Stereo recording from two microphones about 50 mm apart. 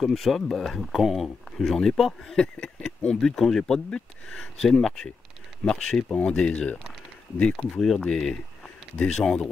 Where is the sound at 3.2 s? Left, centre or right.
Centre.